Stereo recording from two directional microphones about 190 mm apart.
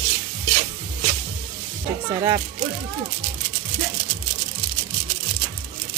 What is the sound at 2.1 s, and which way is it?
Speech, 20° right (ahead or behind).